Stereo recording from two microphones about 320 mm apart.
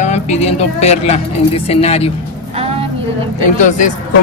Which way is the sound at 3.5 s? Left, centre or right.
Left.